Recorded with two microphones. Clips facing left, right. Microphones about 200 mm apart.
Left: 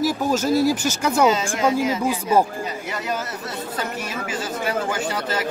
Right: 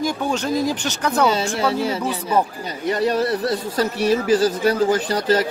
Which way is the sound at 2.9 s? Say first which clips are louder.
Right 13 dB; 35° right (ahead or behind).